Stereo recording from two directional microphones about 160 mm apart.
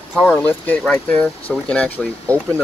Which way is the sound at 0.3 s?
10° left (ahead or behind).